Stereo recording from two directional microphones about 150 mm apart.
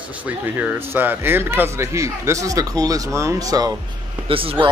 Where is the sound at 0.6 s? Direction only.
15° right (ahead or behind).